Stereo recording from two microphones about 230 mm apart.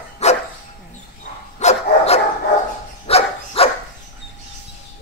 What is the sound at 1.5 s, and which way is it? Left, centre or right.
Dog, left.